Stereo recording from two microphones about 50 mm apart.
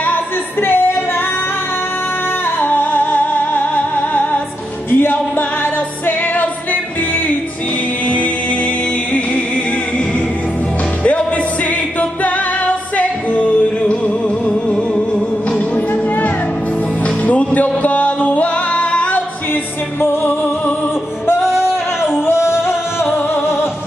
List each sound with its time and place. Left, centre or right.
0.0 s music: left
2.6 s music: left
12.9 s music: left
17.3 s music: left
20.0 s music: left
22.2 s music: left